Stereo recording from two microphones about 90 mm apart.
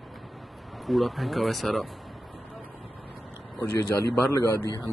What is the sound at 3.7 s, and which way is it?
Speech, 35° left (ahead or behind).